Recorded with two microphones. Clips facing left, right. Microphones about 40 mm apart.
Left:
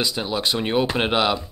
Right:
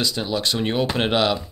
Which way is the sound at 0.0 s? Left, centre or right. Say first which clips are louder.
Even; centre.